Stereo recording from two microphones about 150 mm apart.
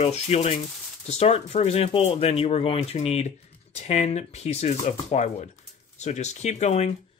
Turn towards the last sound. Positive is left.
turn(degrees=45)  # may be behind; listen again after turning